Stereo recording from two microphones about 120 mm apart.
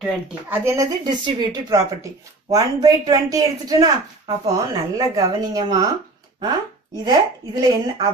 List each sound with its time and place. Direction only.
0.0 s speech: 10° right (ahead or behind)
0.7 s a woman's voice: 30° right (ahead or behind)
7.1 s speech: 35° right (ahead or behind)